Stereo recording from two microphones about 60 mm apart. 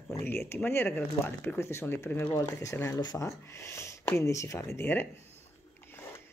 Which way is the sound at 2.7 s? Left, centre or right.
Left.